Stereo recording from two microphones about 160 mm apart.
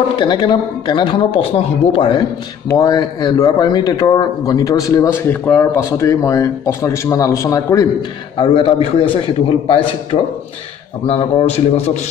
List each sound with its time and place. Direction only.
0.1 s speech: 30° left (ahead or behind)
2.8 s a man's voice: 25° left (ahead or behind)
8.4 s speech: 35° left (ahead or behind)